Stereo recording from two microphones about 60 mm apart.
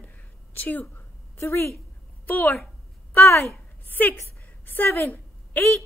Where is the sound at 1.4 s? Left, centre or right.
Left.